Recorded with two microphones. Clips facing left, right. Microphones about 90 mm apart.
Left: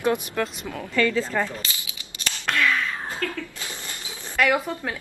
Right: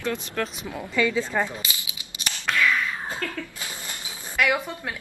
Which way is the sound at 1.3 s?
15° right (ahead or behind).